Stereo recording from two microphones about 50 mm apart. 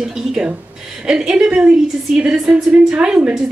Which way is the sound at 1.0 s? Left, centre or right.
Centre.